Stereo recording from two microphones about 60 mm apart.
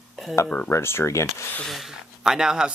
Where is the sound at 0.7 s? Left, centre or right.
Left.